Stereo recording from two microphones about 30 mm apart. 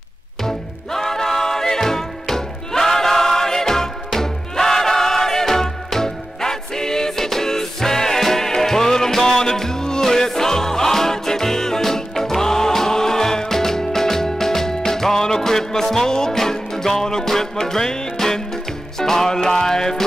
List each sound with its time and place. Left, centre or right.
0.4 s music: centre